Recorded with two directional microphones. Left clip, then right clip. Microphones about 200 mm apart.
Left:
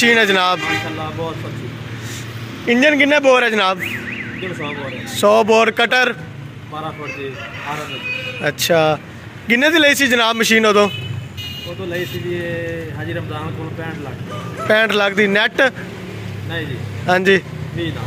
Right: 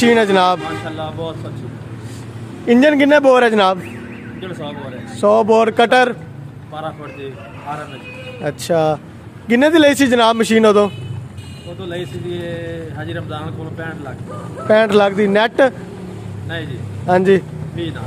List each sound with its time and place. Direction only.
0.0 s a man's voice: 15° right (ahead or behind)
2.6 s speech: 25° right (ahead or behind)
3.4 s a man's voice: 15° right (ahead or behind)
5.2 s a man's voice: 10° right (ahead or behind)
8.5 s a man's voice: 15° right (ahead or behind)
13.1 s a man's voice: 15° right (ahead or behind)